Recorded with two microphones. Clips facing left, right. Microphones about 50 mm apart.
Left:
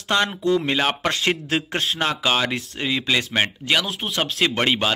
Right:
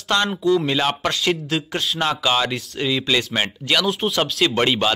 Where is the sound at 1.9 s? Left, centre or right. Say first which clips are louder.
Right 2 dB; centre.